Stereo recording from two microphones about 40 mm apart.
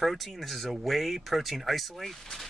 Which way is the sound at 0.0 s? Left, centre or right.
Centre.